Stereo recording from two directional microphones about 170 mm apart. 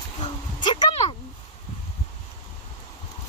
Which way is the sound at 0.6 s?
25° left (ahead or behind).